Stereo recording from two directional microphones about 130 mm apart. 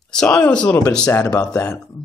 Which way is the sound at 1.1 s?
20° left (ahead or behind).